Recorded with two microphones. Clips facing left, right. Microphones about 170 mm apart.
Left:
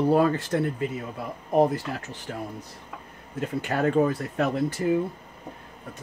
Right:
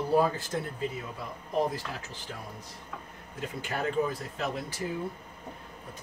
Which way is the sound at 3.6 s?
65° left (ahead or behind).